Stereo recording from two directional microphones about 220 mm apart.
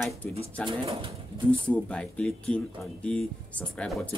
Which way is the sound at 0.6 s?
25° right (ahead or behind).